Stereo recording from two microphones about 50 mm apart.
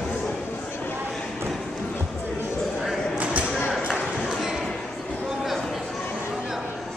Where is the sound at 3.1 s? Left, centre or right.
Right.